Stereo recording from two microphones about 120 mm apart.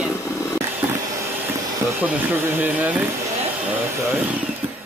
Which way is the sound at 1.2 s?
20° right (ahead or behind).